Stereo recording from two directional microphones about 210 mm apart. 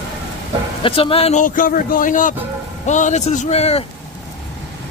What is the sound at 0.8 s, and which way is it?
A man's voice, 25° left (ahead or behind).